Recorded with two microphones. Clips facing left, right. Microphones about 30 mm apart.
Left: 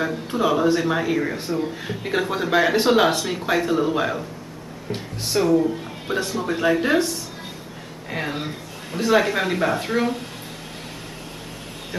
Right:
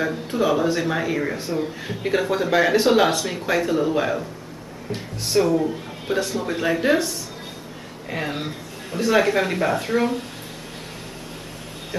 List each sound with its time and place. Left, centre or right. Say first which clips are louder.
0.0 s speech: even; centre
8.1 s speech: even; centre
11.9 s a sound: right 2 dB; left